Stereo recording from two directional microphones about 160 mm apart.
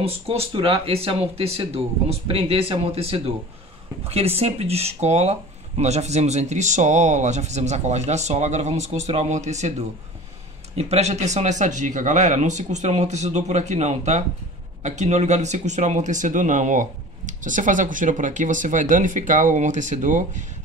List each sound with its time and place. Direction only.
0.0 s speech: 40° right (ahead or behind)
4.4 s speech: 40° right (ahead or behind)